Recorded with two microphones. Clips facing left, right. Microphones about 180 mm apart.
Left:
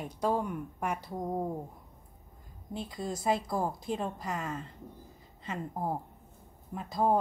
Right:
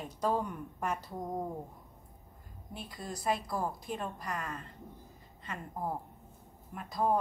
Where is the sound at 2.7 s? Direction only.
25° left (ahead or behind).